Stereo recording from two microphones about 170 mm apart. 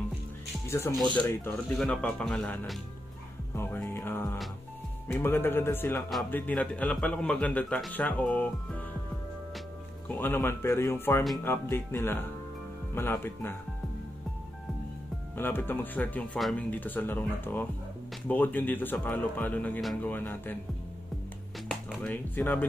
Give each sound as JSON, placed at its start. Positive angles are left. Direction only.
{"t": 0.7, "sound": "speech", "side_deg": 15}
{"t": 1.5, "sound": "speech", "side_deg": 5}
{"t": 3.5, "sound": "a man's voice", "side_deg": 15}
{"t": 10.0, "sound": "a man's voice", "side_deg": 10}
{"t": 15.3, "sound": "a man's voice", "side_deg": 10}
{"t": 21.6, "sound": "speech", "side_deg": 10}